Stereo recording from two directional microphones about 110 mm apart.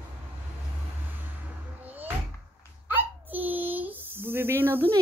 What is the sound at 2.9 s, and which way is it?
Hiccup, 15° right (ahead or behind).